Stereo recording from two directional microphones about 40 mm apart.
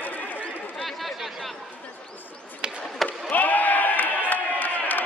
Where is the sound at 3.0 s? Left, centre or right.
Left.